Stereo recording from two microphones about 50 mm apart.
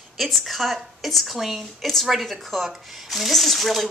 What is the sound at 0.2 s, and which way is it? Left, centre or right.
A woman's voice, centre.